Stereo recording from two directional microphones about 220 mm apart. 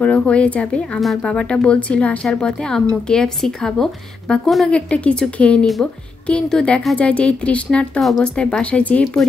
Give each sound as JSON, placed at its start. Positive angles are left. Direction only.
{"t": 0.0, "sound": "speech", "side_deg": 5}